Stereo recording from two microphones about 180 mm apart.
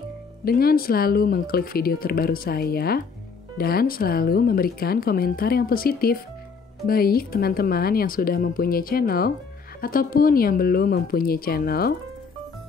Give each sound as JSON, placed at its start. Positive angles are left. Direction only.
{"t": 0.5, "sound": "speech", "side_deg": 60}